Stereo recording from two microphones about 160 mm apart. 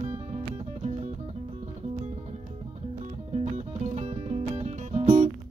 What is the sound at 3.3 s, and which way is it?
Music, 40° right (ahead or behind).